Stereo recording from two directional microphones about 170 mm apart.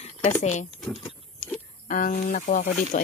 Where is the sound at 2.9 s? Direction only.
50° left (ahead or behind).